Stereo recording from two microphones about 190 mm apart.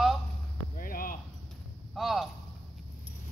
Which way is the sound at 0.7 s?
50° left (ahead or behind).